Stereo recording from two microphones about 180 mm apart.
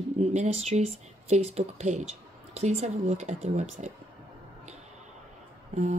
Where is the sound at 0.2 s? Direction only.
35° right (ahead or behind).